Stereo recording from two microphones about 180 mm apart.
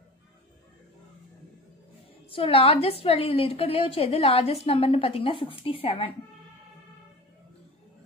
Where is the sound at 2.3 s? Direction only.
30° left (ahead or behind).